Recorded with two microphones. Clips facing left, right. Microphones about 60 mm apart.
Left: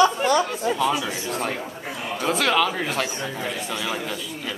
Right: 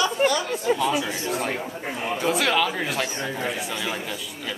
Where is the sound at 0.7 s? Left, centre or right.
Centre.